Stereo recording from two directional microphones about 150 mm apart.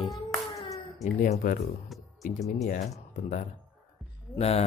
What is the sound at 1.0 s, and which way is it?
Speech, 55° left (ahead or behind).